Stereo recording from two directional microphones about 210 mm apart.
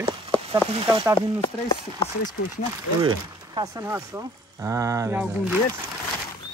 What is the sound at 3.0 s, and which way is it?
Speech, 20° right (ahead or behind).